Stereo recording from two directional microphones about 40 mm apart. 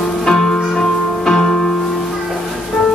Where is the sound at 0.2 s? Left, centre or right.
Centre.